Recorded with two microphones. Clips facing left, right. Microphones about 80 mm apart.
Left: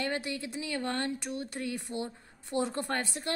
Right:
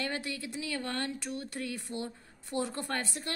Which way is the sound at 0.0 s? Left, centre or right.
Left.